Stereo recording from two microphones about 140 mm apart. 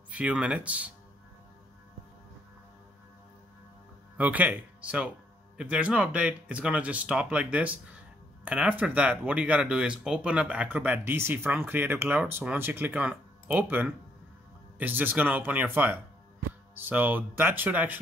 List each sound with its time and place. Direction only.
0.1 s speech: 10° right (ahead or behind)
4.2 s speech: 10° right (ahead or behind)